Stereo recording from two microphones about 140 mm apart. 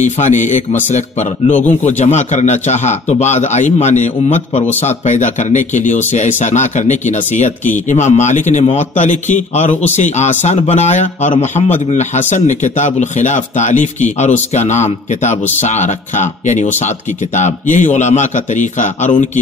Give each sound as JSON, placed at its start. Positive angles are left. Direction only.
{"t": 0.0, "sound": "speech", "side_deg": 60}